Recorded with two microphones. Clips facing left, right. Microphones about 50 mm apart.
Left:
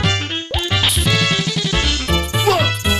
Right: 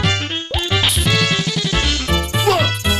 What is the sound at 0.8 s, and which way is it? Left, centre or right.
Music, centre.